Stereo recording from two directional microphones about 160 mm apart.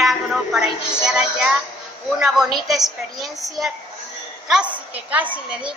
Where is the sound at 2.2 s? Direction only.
5° right (ahead or behind).